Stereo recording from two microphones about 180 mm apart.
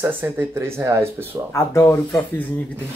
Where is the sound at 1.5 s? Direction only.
15° left (ahead or behind).